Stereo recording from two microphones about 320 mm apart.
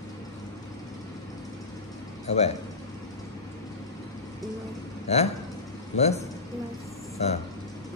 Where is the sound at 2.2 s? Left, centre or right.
Centre.